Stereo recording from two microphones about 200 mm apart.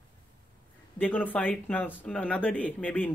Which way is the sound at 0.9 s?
10° left (ahead or behind).